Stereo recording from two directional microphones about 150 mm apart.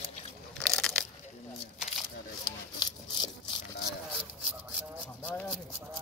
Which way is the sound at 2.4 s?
30° left (ahead or behind).